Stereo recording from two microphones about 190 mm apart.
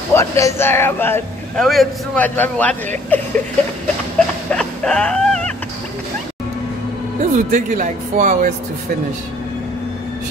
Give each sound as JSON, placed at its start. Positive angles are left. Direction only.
{"t": 0.1, "sound": "a man's voice", "side_deg": 15}
{"t": 4.5, "sound": "music", "side_deg": 5}
{"t": 7.2, "sound": "speech", "side_deg": -40}